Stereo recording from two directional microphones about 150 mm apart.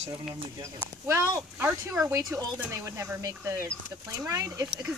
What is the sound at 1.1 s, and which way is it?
Speech, 15° right (ahead or behind).